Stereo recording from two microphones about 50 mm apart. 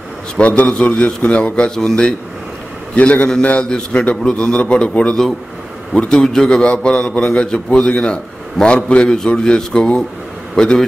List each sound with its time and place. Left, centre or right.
0.4 s a man's voice: left
3.0 s a man's voice: left